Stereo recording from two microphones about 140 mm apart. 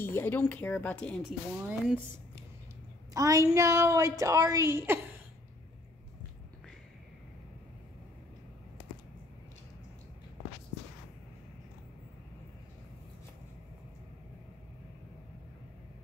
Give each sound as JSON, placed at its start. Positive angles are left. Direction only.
{"t": 0.0, "sound": "speech", "side_deg": 15}
{"t": 1.6, "sound": "speech", "side_deg": -10}
{"t": 3.2, "sound": "a woman's voice", "side_deg": -25}